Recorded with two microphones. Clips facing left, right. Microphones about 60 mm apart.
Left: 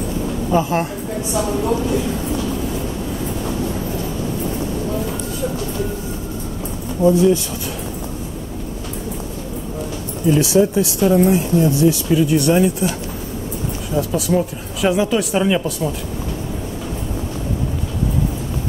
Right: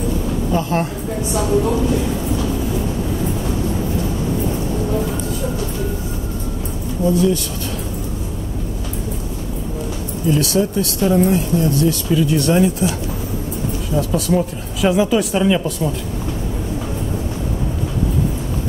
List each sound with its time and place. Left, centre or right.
0.5 s a woman's voice: centre
7.1 s speech: left
10.3 s speech: centre
13.9 s speech: centre